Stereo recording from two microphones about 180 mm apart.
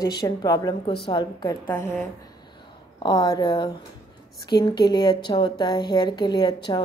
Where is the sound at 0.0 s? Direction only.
20° left (ahead or behind).